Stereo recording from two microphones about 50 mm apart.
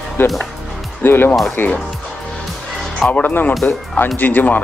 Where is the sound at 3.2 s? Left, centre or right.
Left.